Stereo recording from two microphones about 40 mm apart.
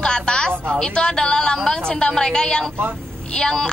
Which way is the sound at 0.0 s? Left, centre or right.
Left.